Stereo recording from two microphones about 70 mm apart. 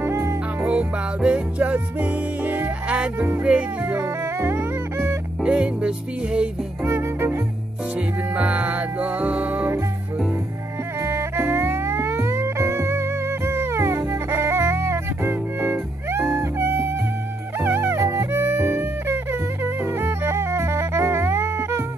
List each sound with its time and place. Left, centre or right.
0.0 s music: right
0.7 s music: centre
4.2 s music: right
5.4 s music: centre
6.8 s music: right
8.4 s music: right
11.0 s music: right
16.3 s music: right